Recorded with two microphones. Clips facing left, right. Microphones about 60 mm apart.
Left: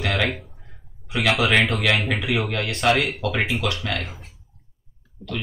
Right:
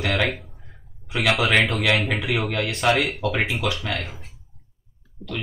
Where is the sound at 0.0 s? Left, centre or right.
Centre.